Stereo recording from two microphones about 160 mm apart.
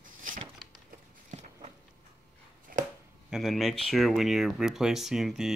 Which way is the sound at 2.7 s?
65° right (ahead or behind).